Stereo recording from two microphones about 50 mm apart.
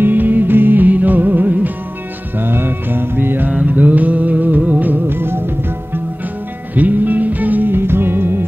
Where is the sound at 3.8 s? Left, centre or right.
Right.